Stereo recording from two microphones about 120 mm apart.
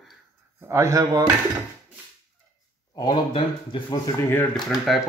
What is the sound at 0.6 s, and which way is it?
Speech, 25° right (ahead or behind).